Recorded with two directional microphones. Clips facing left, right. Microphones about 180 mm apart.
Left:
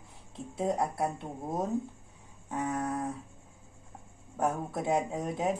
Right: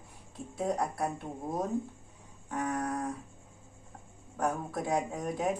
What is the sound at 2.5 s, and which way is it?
Speech, 25° left (ahead or behind).